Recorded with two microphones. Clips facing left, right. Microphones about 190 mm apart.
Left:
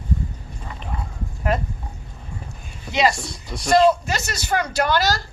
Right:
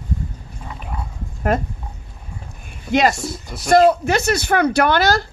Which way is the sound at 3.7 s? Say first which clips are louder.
Right 3 dB; 60° right (ahead or behind).